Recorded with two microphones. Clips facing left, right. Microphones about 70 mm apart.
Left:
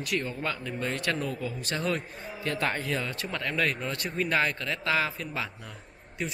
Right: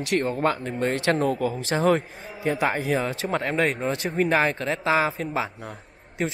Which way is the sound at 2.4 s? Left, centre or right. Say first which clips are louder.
Right 6 dB; centre.